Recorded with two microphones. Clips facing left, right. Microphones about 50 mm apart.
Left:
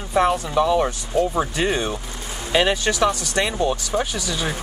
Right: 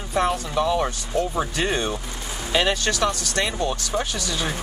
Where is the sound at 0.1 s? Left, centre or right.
Centre.